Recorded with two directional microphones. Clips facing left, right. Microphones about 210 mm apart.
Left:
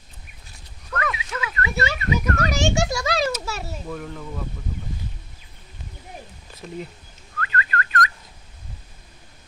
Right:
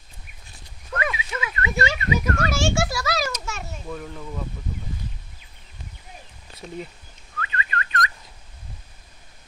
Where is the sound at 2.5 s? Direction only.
20° left (ahead or behind).